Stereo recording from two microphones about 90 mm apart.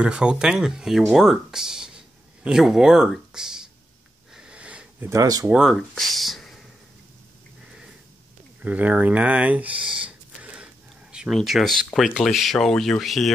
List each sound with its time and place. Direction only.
0.0 s speech: 10° right (ahead or behind)
4.3 s sniff: 10° right (ahead or behind)
5.1 s speech: 45° right (ahead or behind)
5.5 s speech: 5° right (ahead or behind)
5.8 s a sound: 5° left (ahead or behind)
8.6 s speech: 15° right (ahead or behind)
10.0 s a sound: 15° right (ahead or behind); by 11.8 s centre (ahead or behind)
11.9 s speech: centre (ahead or behind)